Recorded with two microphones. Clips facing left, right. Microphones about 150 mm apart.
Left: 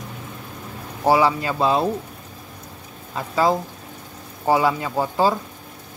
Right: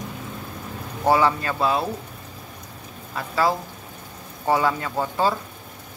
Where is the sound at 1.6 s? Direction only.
25° left (ahead or behind).